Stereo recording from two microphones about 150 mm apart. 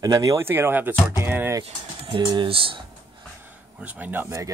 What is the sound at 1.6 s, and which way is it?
Speech, 35° right (ahead or behind).